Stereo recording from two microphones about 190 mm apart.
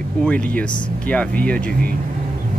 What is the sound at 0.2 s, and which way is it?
Speech, 5° left (ahead or behind).